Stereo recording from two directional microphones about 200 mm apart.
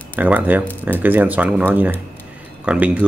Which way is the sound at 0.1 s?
10° right (ahead or behind).